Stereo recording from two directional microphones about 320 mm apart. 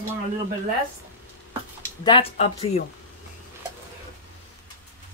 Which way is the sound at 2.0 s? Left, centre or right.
Centre.